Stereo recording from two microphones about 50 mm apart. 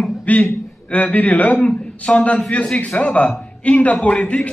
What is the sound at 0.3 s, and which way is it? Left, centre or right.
A man's voice, left.